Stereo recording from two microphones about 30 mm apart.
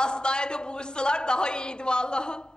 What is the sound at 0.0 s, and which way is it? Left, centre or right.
A woman's voice, left.